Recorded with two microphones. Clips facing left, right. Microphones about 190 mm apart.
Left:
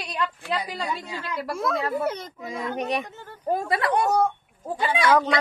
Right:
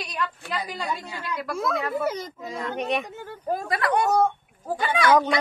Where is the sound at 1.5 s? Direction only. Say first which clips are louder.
Left 1 dB; centre (ahead or behind).